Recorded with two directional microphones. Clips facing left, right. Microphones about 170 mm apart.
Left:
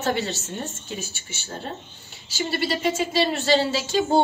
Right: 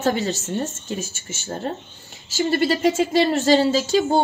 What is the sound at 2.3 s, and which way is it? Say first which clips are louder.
Speech: right 6 dB; 40° right (ahead or behind).